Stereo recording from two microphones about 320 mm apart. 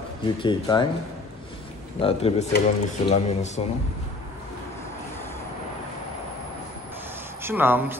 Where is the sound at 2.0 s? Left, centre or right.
Centre.